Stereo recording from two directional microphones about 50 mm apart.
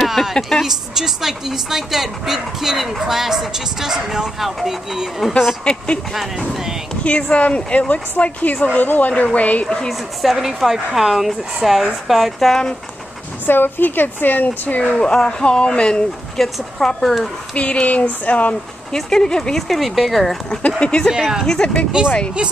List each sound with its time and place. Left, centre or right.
0.0 s a sound: centre
0.7 s speech: centre
6.1 s speech: centre
7.0 s speech: left
10.3 s speech: centre
13.5 s speech: left
14.8 s speech: left
16.3 s speech: centre
17.6 s speech: left
18.9 s speech: centre
20.4 s speech: left
21.1 s speech: centre
21.5 s speech: left